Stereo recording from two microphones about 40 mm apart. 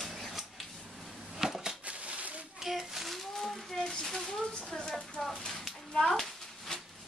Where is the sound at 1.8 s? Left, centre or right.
Right.